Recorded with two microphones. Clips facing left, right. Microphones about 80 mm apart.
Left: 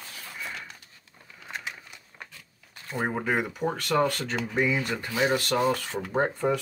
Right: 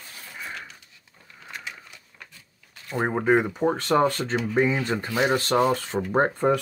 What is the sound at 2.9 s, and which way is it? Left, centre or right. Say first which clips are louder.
Speech: right 6 dB; right.